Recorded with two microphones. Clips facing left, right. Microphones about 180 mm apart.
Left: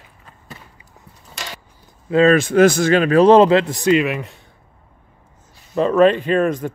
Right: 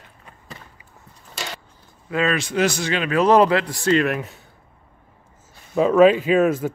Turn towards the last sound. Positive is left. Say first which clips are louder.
# even
turn(degrees=-5)  # may be behind; listen again after turning